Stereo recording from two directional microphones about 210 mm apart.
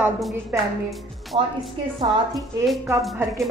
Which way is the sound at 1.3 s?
25° right (ahead or behind).